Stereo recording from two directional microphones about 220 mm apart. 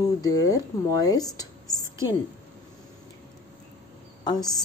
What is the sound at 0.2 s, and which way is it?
A woman's voice, 15° left (ahead or behind).